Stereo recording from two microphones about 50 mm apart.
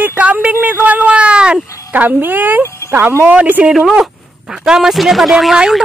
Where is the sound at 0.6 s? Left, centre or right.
Right.